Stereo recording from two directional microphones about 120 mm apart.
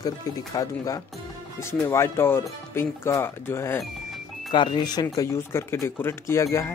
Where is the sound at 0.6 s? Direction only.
30° left (ahead or behind).